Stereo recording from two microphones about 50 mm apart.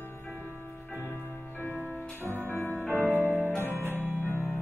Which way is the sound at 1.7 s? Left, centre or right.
Centre.